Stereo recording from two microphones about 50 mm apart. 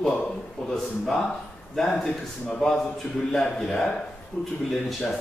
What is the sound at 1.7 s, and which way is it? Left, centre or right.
Speech, centre.